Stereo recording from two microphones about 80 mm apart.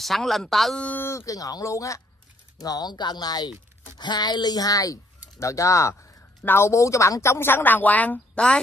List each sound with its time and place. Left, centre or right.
0.0 s speech: centre
0.7 s speech: left
1.1 s speech: left
2.6 s speech: left; by 8.5 s centre